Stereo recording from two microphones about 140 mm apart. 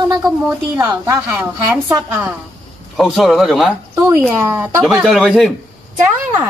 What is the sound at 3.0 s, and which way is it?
Speech, centre (ahead or behind).